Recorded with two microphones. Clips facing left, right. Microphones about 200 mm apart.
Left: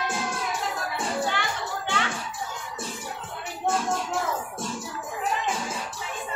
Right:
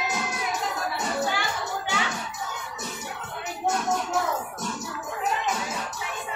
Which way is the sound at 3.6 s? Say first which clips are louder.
Even; 30° left (ahead or behind).